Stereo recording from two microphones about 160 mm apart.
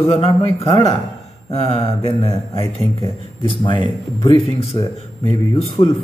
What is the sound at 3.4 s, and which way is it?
Speech, 30° left (ahead or behind).